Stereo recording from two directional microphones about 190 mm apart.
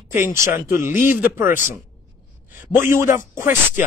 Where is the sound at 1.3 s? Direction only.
10° right (ahead or behind).